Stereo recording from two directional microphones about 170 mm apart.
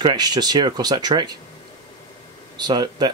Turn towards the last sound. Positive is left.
turn(degrees=-25)  # may be behind; listen again after turning